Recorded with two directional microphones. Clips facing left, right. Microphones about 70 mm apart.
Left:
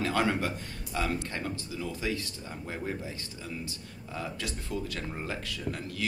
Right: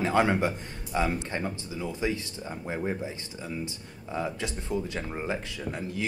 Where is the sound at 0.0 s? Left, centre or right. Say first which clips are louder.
Right 4 dB; right.